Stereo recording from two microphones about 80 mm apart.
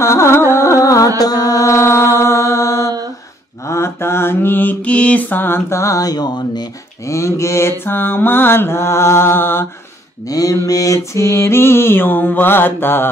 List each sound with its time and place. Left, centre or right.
0.0 s mantra: left
0.5 s music: left
1.7 s mantra: left
7.1 s mantra: left
10.2 s mantra: left